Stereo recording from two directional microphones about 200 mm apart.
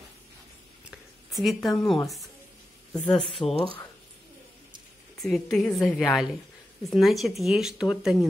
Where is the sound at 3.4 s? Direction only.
20° left (ahead or behind).